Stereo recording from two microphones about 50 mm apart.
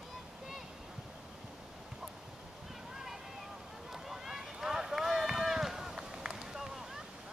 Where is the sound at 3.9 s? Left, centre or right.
Centre.